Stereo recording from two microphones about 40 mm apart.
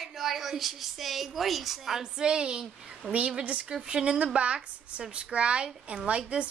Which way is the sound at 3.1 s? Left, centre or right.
Right.